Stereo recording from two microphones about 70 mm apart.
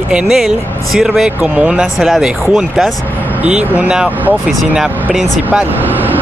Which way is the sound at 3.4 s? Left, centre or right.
Right.